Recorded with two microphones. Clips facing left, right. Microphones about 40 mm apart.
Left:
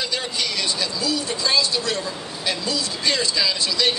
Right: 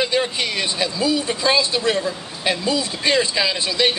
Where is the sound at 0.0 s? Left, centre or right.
Right.